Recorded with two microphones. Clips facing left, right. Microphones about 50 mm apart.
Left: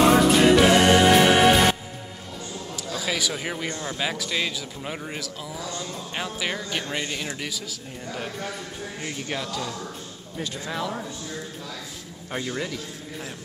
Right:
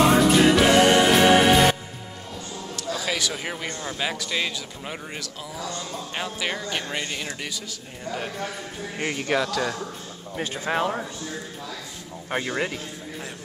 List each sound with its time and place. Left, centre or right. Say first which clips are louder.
0.0 s music: even; centre
2.9 s speech: even; centre
9.0 s speech: right 8 dB; right
10.3 s speech: right 5 dB; right
12.3 s speech: right 3 dB; right